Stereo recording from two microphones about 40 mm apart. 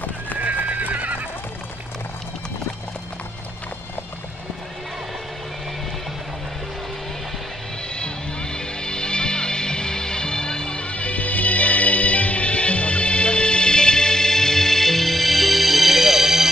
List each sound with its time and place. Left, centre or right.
0.4 s horse: right
7.9 s music: left; by 16.4 s centre